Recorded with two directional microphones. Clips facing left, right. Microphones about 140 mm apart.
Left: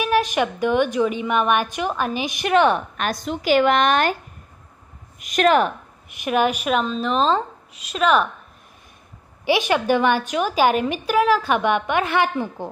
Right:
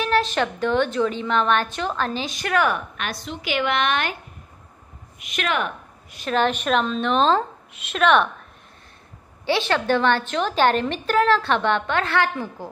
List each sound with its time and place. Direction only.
0.0 s a woman's voice: 15° left (ahead or behind)
3.0 s a woman's voice: 45° left (ahead or behind)
5.2 s a woman's voice: 40° left (ahead or behind)
6.0 s a woman's voice: 15° left (ahead or behind)
9.4 s a woman's voice: 15° left (ahead or behind)